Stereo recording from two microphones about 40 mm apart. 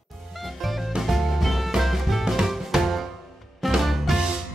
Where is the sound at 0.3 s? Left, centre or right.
Centre.